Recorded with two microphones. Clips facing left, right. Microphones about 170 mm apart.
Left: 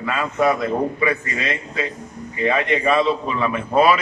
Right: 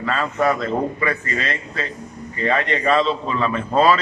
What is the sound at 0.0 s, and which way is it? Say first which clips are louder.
A man's voice: left 1 dB; 10° left (ahead or behind).